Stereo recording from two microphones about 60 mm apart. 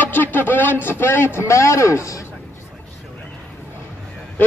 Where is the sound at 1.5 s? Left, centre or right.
Left.